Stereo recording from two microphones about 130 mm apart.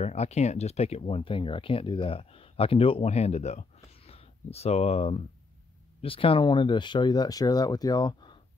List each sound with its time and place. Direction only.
0.0 s speech: 55° left (ahead or behind); by 8.4 s 35° left (ahead or behind)